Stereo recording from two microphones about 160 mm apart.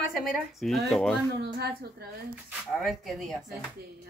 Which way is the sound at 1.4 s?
90° right.